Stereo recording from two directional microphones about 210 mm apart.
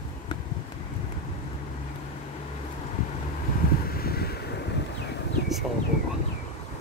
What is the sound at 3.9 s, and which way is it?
Wind noise, 45° left (ahead or behind).